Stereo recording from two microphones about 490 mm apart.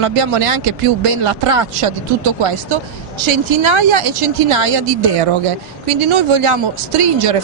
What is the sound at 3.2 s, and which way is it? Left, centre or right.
Speech, right.